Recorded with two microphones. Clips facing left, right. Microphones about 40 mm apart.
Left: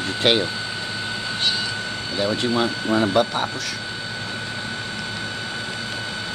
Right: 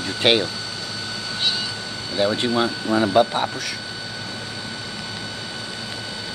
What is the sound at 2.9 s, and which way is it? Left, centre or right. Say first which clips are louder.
Speech: right 2 dB; centre.